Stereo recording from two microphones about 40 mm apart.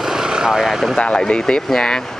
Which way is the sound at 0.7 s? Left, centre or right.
Centre.